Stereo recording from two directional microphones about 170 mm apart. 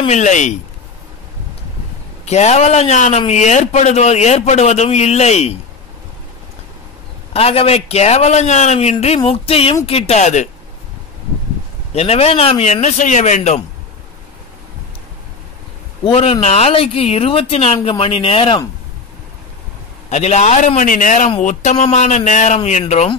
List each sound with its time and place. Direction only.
0.0 s a man's voice: 45° left (ahead or behind)
2.2 s a man's voice: 40° left (ahead or behind)
7.3 s a man's voice: 35° left (ahead or behind)
11.9 s a man's voice: 35° left (ahead or behind)
16.1 s a man's voice: 35° left (ahead or behind)
20.1 s a man's voice: 40° left (ahead or behind)